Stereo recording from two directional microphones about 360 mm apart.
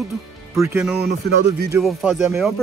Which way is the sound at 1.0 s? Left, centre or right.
Right.